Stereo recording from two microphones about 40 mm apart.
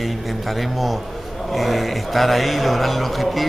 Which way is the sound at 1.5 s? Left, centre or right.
Centre.